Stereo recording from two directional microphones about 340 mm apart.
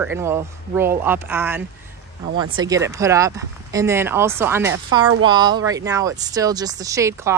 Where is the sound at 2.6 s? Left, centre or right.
Centre.